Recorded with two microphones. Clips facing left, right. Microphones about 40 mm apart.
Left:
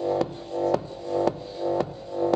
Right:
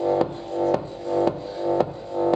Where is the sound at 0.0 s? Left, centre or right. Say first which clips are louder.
Right 4 dB; right.